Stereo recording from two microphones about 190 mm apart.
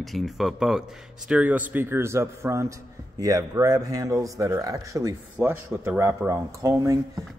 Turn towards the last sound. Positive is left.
turn(degrees=-15)  # may be behind; listen again after turning